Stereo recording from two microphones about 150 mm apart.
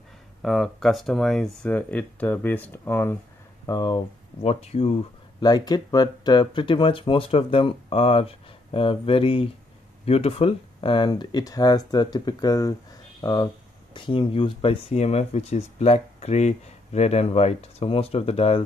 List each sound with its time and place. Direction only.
0.4 s speech: centre (ahead or behind)
3.6 s speech: 25° left (ahead or behind)
4.4 s speech: 45° left (ahead or behind)
5.4 s speech: 30° left (ahead or behind)